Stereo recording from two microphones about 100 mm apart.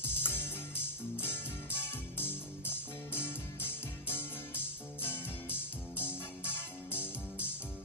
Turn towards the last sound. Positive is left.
turn(degrees=20)  # may be behind; listen again after turning